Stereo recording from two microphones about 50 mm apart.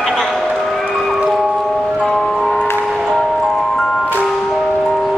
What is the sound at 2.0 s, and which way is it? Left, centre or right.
Music, centre.